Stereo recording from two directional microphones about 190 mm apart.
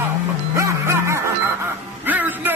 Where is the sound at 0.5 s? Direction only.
15° right (ahead or behind).